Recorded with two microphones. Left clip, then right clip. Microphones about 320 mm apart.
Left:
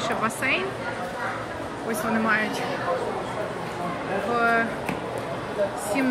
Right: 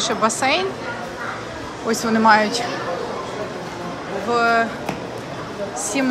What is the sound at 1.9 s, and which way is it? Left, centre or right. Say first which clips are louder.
Speech: right 9 dB; centre.